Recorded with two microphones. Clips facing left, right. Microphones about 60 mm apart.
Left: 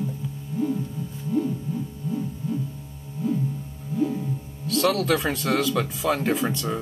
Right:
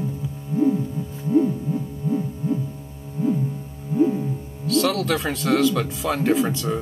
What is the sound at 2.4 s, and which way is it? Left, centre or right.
Music, right.